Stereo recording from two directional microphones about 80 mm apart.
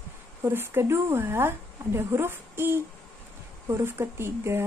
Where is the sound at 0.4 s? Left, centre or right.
Right.